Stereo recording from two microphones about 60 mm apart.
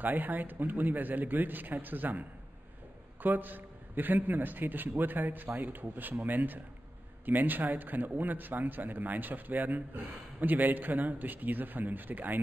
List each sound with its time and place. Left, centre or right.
0.0 s a man's voice: right